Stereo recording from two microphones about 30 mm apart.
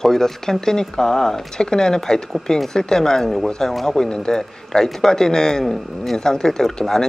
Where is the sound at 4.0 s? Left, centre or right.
Left.